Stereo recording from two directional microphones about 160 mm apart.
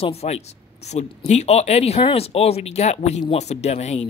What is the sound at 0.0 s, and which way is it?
A woman's voice, 40° left (ahead or behind).